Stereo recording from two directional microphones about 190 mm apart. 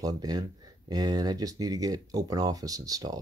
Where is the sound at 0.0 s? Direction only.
20° right (ahead or behind).